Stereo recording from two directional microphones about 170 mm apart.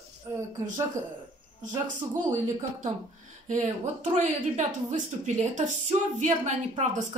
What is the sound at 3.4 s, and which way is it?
Speech, 45° right (ahead or behind).